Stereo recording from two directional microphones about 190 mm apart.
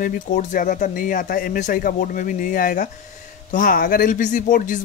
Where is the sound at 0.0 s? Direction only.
45° left (ahead or behind).